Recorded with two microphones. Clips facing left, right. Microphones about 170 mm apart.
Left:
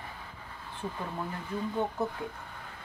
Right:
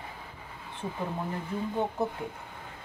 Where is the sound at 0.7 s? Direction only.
20° right (ahead or behind).